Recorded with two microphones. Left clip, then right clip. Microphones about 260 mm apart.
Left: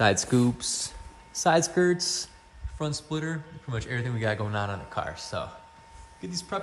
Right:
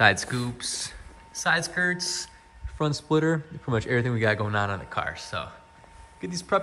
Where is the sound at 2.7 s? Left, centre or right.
Centre.